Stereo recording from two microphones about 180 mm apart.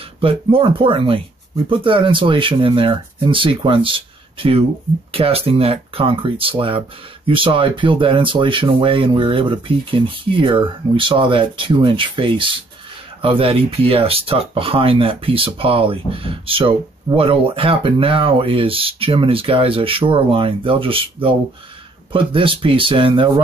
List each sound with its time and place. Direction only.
0.2 s speech: 30° right (ahead or behind)